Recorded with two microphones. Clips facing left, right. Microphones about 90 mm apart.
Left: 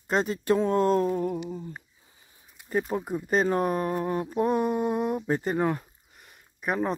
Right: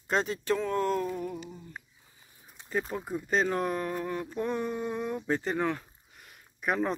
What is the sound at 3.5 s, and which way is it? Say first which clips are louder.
Speech: left 5 dB; 25° left (ahead or behind).